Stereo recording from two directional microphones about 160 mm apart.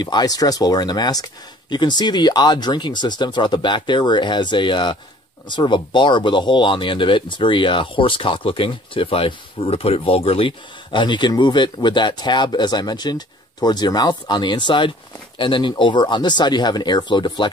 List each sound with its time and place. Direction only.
0.0 s speech: 25° left (ahead or behind)